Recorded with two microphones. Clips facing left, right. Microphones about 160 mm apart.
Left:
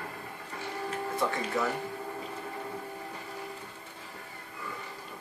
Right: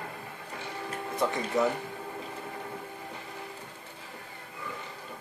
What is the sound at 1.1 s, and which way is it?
Speech, 20° right (ahead or behind).